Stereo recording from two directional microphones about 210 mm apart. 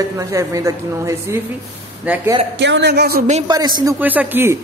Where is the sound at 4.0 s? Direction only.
10° right (ahead or behind).